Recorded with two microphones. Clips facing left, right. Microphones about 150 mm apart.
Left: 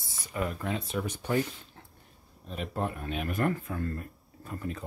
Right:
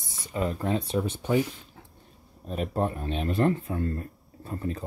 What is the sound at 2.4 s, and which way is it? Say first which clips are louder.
Speech: right 5 dB; 40° right (ahead or behind).